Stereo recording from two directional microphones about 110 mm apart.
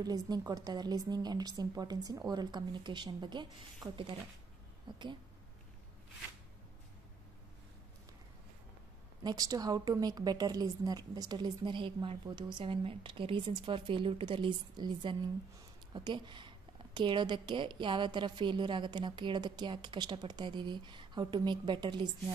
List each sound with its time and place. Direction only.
0.0 s a woman's voice: 35° right (ahead or behind)
9.2 s a woman's voice: 35° right (ahead or behind)